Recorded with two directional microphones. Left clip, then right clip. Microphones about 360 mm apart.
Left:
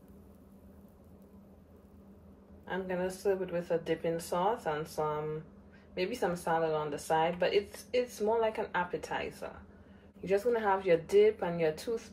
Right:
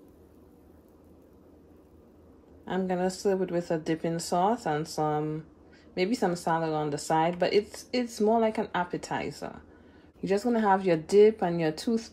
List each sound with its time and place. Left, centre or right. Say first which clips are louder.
2.6 s speech: right 5 dB; right